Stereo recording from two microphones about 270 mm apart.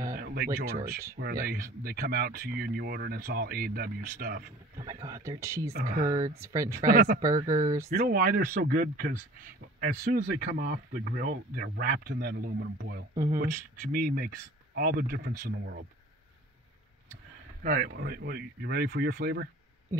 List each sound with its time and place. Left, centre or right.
0.1 s a sound: right
0.6 s speech: right
4.7 s speech: centre
5.7 s speech: right
6.4 s speech: centre
6.9 s speech: right
7.2 s speech: centre
8.0 s speech: right
13.1 s speech: centre
13.9 s speech: right
17.6 s speech: right